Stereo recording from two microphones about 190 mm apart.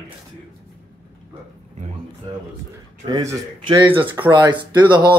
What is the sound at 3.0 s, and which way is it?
Speech, 20° right (ahead or behind).